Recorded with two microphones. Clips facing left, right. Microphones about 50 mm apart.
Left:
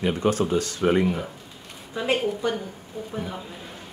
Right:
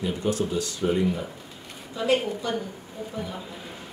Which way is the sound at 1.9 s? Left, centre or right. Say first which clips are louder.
Even; left.